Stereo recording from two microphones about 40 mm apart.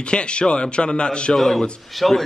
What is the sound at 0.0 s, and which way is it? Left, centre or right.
A man's voice, left.